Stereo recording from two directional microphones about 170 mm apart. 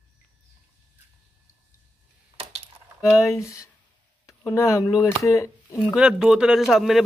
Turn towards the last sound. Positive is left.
turn(degrees=0)  # may be behind; listen again after turning